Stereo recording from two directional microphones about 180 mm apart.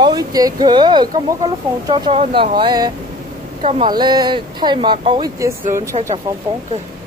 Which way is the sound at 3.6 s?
35° right (ahead or behind).